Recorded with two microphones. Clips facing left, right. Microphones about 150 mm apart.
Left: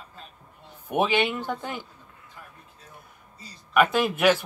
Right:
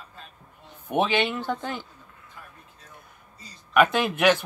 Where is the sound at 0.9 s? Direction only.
10° left (ahead or behind).